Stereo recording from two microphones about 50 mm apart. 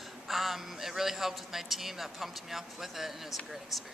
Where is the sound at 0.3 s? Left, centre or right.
Centre.